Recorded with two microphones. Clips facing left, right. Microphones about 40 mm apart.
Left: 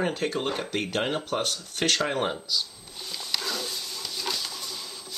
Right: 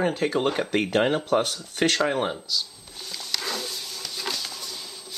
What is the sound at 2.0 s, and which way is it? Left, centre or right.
Speech, centre.